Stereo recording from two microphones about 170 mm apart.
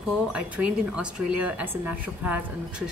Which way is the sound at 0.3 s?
5° right (ahead or behind).